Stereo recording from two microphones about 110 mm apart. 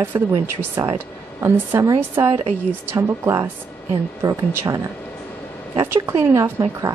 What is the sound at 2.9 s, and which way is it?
Speech, 25° right (ahead or behind).